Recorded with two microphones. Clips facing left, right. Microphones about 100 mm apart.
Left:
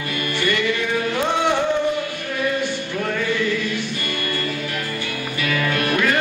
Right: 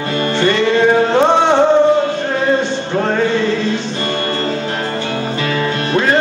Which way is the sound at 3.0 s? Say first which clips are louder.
Right 9 dB; 60° right (ahead or behind).